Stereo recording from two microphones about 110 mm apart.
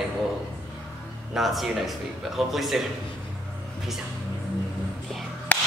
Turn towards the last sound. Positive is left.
turn(degrees=15)  # may be behind; listen again after turning